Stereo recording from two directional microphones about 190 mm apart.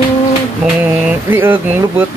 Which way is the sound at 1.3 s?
10° right (ahead or behind).